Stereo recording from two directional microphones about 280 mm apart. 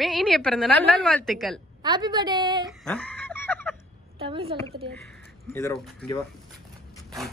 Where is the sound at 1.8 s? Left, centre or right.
Centre.